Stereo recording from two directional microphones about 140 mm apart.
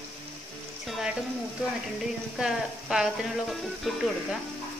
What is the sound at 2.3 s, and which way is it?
Speech, 5° right (ahead or behind).